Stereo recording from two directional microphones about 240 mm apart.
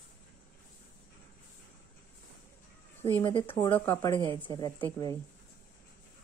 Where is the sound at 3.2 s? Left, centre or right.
Left.